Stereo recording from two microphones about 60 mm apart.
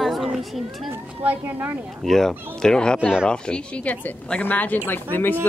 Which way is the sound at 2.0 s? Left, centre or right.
Centre.